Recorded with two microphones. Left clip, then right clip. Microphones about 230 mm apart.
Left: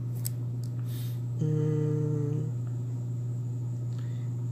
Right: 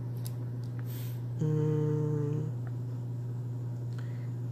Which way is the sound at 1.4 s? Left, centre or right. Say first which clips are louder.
Left 1 dB; centre.